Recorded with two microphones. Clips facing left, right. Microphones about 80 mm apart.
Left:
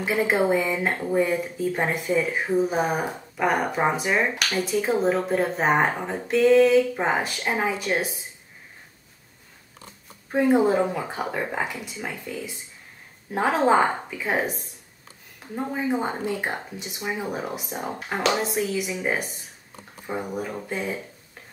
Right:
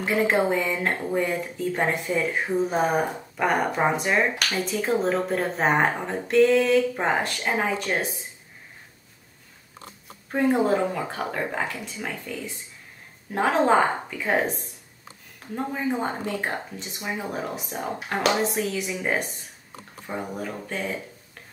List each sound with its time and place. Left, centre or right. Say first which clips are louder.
0.0 s speech: even; centre
10.3 s speech: left 2 dB; centre
15.5 s speech: left 1 dB; centre
20.3 s speech: left 2 dB; centre